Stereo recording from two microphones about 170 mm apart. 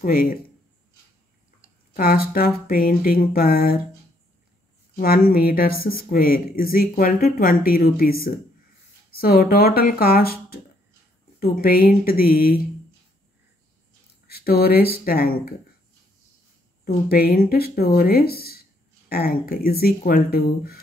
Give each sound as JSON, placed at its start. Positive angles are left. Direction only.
{"t": 0.0, "sound": "speech", "side_deg": 55}
{"t": 2.0, "sound": "speech", "side_deg": 60}
{"t": 4.9, "sound": "speech", "side_deg": 60}
{"t": 14.2, "sound": "speech", "side_deg": 65}
{"t": 16.8, "sound": "speech", "side_deg": 60}